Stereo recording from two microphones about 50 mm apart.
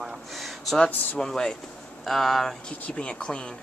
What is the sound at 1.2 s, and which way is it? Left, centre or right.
Speech, centre.